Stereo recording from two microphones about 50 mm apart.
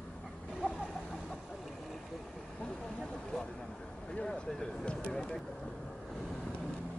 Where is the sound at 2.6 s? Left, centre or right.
Centre.